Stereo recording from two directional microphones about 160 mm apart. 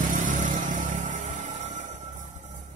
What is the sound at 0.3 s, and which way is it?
Music, 55° right (ahead or behind).